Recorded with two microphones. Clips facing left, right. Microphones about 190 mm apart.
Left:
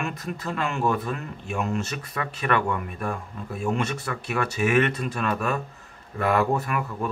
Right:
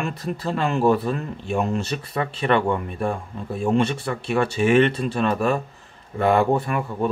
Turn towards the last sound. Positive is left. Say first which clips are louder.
# right 4 dB
turn(degrees=-30)  # may be behind; listen again after turning